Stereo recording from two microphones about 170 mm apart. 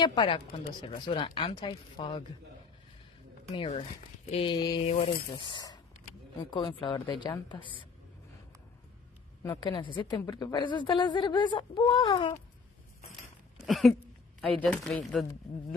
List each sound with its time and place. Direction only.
0.0 s a woman's voice: 25° left (ahead or behind)
3.5 s mantra: 35° left (ahead or behind)
5.3 s a woman's voice: 30° left (ahead or behind)
9.5 s a woman's voice: 30° left (ahead or behind)
13.1 s a sound: centre (ahead or behind)
14.4 s speech: 5° left (ahead or behind)